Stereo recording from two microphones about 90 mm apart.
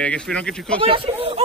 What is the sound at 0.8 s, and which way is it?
Speech, 90° right.